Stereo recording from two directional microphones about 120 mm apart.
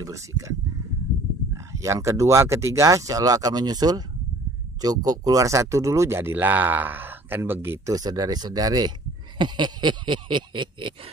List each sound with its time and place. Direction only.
0.0 s speech: 25° right (ahead or behind); by 11.0 s 40° right (ahead or behind)